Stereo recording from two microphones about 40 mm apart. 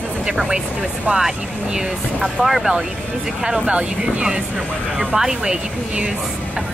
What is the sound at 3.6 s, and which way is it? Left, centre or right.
Speech, right.